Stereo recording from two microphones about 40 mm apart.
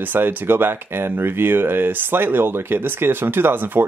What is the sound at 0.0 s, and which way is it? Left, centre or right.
Speech, right.